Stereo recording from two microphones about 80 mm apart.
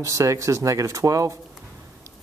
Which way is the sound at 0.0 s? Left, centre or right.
Right.